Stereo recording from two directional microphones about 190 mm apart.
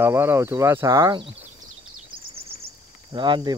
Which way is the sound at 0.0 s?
15° right (ahead or behind).